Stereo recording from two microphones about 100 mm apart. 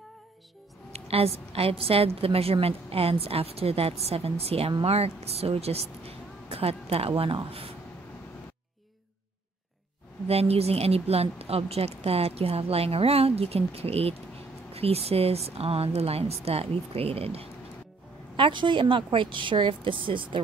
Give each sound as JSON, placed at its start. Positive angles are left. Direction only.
{"t": 0.9, "sound": "a woman's voice", "side_deg": -90}
{"t": 10.2, "sound": "a woman's voice", "side_deg": -90}
{"t": 18.3, "sound": "a woman's voice", "side_deg": -55}